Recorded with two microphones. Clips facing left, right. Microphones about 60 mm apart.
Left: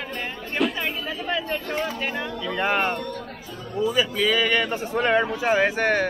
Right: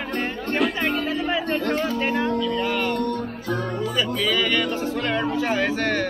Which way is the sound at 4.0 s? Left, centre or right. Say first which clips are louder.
Even; centre.